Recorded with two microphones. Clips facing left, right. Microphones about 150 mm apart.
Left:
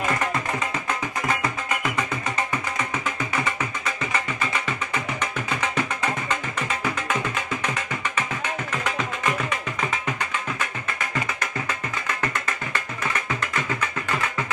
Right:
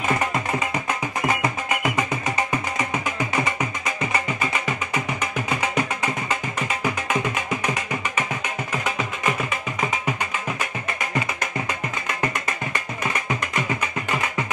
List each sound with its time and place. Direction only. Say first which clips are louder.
1.2 s music: right 4 dB; 15° right (ahead or behind)
3.4 s music: right 2 dB; 15° right (ahead or behind)
7.6 s music: right 2 dB; 10° right (ahead or behind)
12.1 s music: right 2 dB; 15° right (ahead or behind)